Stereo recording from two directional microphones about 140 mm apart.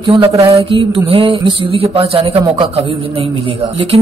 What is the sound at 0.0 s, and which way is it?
Mantra, 40° right (ahead or behind).